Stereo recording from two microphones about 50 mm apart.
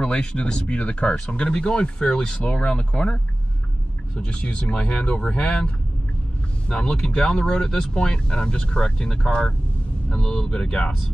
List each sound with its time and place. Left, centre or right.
0.0 s speech: centre
6.7 s speech: centre